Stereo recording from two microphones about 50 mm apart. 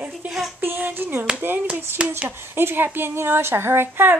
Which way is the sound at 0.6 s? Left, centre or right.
Right.